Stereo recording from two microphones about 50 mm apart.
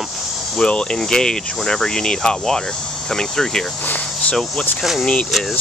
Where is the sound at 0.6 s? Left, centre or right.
Left.